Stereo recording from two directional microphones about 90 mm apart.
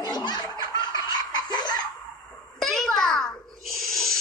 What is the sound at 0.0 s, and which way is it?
Laughter, 50° left (ahead or behind).